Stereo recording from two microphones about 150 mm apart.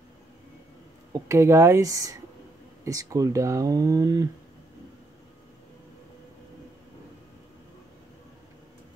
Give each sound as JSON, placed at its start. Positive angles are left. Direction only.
{"t": 1.1, "sound": "speech", "side_deg": -20}